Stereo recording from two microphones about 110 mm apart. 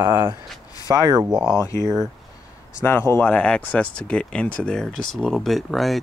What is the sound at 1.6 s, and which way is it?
Speech, 25° left (ahead or behind).